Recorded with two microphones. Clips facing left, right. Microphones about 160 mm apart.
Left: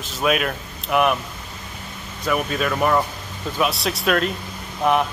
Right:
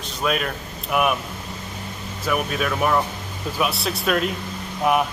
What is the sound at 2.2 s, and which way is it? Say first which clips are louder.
Speech: left 1 dB; 5° right (ahead or behind).